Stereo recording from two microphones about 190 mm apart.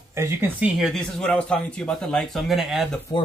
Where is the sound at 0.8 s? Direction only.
Centre (ahead or behind).